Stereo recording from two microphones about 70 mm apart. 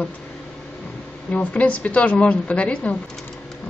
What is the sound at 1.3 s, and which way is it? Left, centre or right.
A woman's voice, centre.